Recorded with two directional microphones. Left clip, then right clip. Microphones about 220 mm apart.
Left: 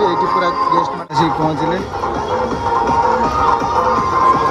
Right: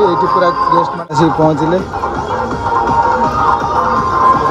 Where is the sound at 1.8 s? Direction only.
40° left (ahead or behind).